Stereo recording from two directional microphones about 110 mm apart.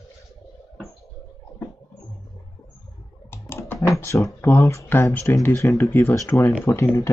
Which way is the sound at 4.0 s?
25° left (ahead or behind).